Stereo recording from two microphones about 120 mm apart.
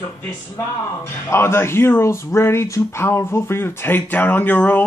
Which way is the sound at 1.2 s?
20° left (ahead or behind).